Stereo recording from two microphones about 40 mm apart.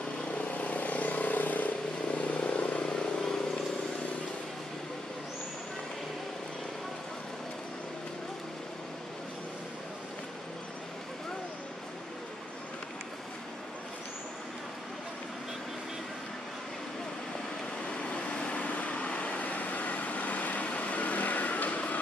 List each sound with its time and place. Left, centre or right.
0.2 s vehicle: left
2.1 s vehicle: left
2.8 s vehicle: left
17.8 s vehicle: left